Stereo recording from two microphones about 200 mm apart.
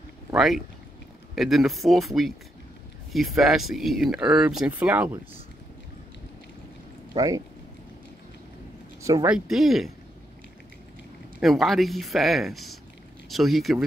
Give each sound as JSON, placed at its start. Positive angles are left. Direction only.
{"t": 0.3, "sound": "speech", "side_deg": 0}
{"t": 7.2, "sound": "speech", "side_deg": -15}
{"t": 9.0, "sound": "speech", "side_deg": -15}
{"t": 9.3, "sound": "speech", "side_deg": 0}
{"t": 11.3, "sound": "speech", "side_deg": 0}